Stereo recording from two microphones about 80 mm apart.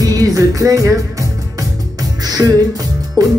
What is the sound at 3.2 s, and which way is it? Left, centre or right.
Music, right.